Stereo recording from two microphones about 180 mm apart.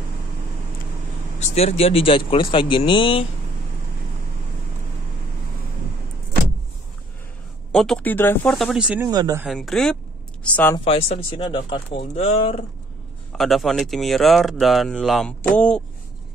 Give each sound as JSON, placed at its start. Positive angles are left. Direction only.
{"t": 1.4, "sound": "speech", "side_deg": 35}
{"t": 7.7, "sound": "speech", "side_deg": 5}
{"t": 8.5, "sound": "speech", "side_deg": 0}
{"t": 9.0, "sound": "speech", "side_deg": -20}
{"t": 9.4, "sound": "speech", "side_deg": 0}
{"t": 10.8, "sound": "speech", "side_deg": 30}
{"t": 13.3, "sound": "speech", "side_deg": 0}